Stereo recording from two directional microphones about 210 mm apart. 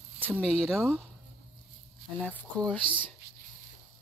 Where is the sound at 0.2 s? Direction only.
5° left (ahead or behind).